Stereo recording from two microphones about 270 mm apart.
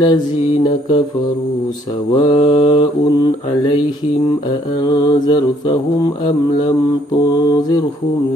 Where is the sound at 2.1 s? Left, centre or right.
Centre.